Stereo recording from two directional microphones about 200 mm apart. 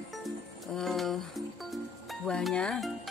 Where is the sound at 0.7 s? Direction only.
Centre (ahead or behind).